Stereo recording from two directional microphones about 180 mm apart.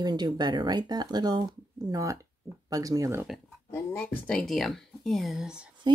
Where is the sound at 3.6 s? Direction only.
10° left (ahead or behind); by 5.7 s 5° right (ahead or behind).